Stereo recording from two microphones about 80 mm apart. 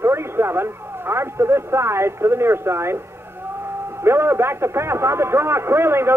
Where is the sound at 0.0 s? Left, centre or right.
Right.